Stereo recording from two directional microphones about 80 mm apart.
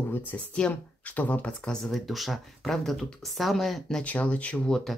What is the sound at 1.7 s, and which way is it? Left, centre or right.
Speech, centre.